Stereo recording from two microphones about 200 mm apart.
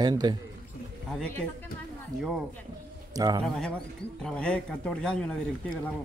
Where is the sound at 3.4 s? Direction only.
5° left (ahead or behind).